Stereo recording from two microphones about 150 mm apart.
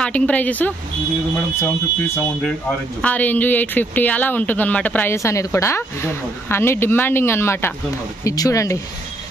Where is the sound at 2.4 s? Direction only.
5° left (ahead or behind).